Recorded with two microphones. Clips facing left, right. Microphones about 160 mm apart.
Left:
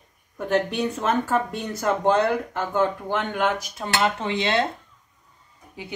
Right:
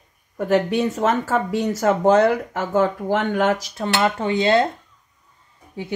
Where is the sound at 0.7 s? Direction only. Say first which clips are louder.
Right 4 dB; 90° right.